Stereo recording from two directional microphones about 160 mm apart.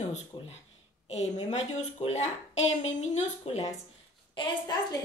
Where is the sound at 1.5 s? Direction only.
45° left (ahead or behind).